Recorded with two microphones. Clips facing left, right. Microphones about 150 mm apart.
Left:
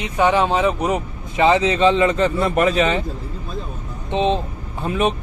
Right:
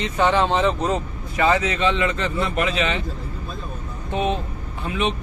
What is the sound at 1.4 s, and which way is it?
Speech, 25° left (ahead or behind).